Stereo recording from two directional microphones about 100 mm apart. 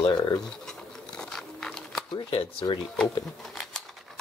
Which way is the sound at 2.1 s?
70° left (ahead or behind).